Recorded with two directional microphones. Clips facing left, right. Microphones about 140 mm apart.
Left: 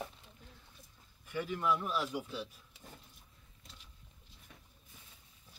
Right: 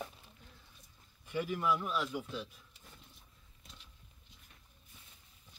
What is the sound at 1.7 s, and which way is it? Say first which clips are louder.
Speech: left 3 dB; centre (ahead or behind).